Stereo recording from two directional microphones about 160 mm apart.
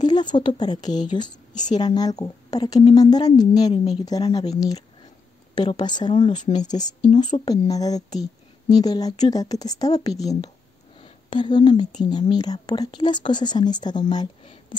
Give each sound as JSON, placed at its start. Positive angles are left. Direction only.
{"t": 0.0, "sound": "speech", "side_deg": 25}
{"t": 11.0, "sound": "a sound", "side_deg": 30}
{"t": 12.0, "sound": "speech", "side_deg": 25}